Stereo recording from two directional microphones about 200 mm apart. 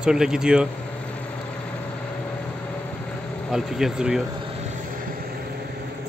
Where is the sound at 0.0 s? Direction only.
5° right (ahead or behind).